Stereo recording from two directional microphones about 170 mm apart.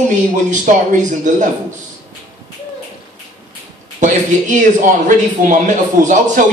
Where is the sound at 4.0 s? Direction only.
45° right (ahead or behind).